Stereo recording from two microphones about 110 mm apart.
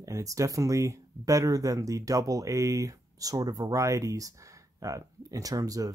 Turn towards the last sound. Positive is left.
turn(degrees=-35)  # may be behind; listen again after turning